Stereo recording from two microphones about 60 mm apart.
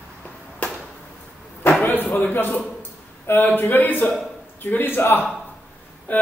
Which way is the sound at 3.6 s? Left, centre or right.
Left.